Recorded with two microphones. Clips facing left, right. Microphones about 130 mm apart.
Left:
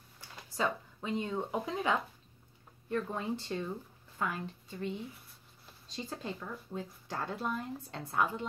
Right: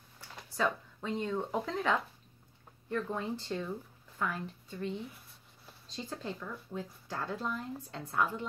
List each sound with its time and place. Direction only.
0.6 s speech: 15° left (ahead or behind)
5.9 s speech: 15° left (ahead or behind)